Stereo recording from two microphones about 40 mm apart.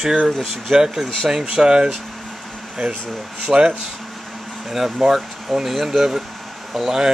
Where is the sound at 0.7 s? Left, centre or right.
Centre.